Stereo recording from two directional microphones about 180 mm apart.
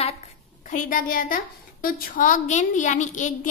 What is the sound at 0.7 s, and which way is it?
A woman's voice, 50° left (ahead or behind).